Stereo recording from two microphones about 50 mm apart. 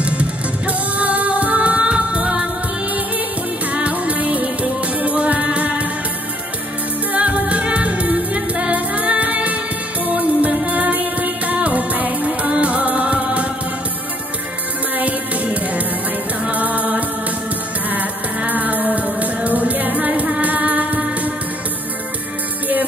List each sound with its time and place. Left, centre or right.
0.0 s music: right
3.7 s music: right
7.1 s music: right
15.0 s music: right